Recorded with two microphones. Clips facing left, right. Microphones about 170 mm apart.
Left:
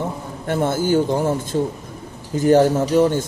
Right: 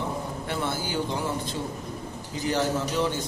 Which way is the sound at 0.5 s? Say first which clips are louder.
Left 13 dB; 50° left (ahead or behind).